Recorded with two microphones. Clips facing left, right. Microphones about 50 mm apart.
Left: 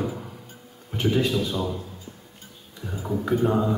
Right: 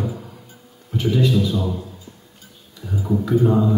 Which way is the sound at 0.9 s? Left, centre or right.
Left.